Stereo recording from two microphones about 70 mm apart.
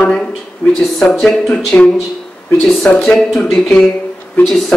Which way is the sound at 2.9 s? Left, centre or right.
Left.